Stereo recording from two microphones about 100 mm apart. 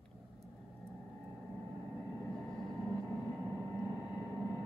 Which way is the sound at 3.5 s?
30° right (ahead or behind).